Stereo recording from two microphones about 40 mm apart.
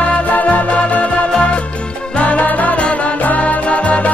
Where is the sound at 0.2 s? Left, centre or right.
Left.